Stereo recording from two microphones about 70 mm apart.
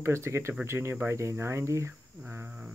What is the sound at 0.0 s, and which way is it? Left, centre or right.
Speech, right.